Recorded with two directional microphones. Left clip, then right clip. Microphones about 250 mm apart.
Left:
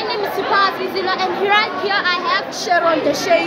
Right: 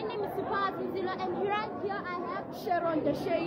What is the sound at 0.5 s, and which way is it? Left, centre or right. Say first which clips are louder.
Speech: left 16 dB; centre.